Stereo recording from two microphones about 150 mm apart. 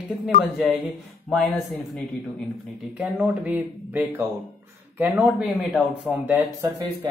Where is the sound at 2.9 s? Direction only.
5° right (ahead or behind).